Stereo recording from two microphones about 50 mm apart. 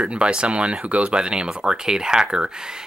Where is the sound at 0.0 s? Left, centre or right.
Right.